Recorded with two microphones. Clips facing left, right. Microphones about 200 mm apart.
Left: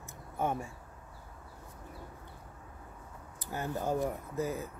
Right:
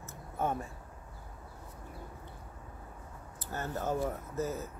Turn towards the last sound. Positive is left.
turn(degrees=15)  # may be behind; listen again after turning